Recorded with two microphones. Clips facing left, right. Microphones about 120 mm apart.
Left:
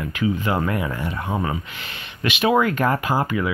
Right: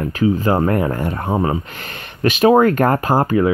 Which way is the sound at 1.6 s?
45° right (ahead or behind).